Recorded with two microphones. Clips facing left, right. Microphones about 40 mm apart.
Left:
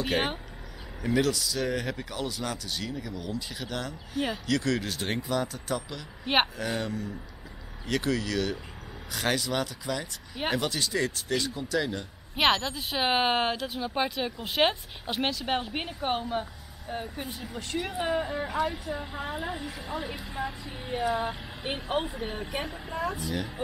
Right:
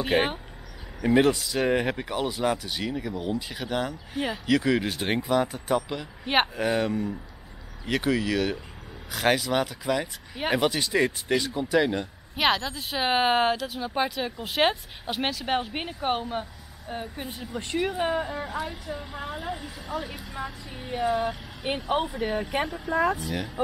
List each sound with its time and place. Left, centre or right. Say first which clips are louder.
0.0 s speech: right 4 dB; centre
1.0 s speech: right 5 dB; right
6.2 s speech: right 1 dB; centre
6.5 s speech: right 6 dB; centre
12.4 s speech: even; centre
23.2 s speech: right 1 dB; centre